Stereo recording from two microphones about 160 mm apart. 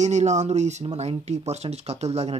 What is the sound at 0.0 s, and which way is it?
Speech, 45° right (ahead or behind).